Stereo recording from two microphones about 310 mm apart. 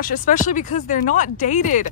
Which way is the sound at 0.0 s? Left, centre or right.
Left.